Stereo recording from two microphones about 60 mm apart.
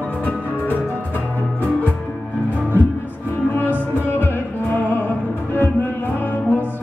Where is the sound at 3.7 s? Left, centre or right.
Left.